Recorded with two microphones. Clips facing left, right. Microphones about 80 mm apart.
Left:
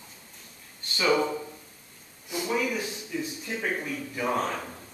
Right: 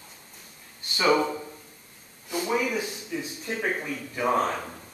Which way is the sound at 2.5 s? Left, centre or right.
Centre.